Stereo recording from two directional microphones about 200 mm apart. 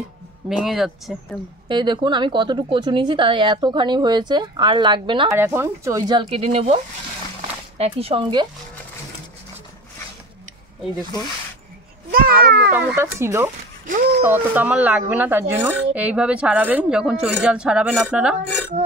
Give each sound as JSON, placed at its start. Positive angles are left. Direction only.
{"t": 0.5, "sound": "speech", "side_deg": 0}
{"t": 1.7, "sound": "a woman's voice", "side_deg": -25}
{"t": 5.4, "sound": "a woman's voice", "side_deg": -10}
{"t": 12.1, "sound": "children playing", "side_deg": -45}
{"t": 12.4, "sound": "speech", "side_deg": -55}
{"t": 12.9, "sound": "a woman's voice", "side_deg": -15}
{"t": 13.8, "sound": "speech", "side_deg": -45}
{"t": 14.2, "sound": "a woman's voice", "side_deg": -10}